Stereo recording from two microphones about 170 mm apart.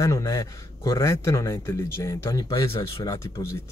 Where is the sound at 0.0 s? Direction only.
20° left (ahead or behind).